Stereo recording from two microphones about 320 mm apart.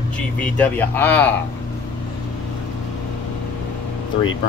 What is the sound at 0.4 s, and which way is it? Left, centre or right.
Speech, centre.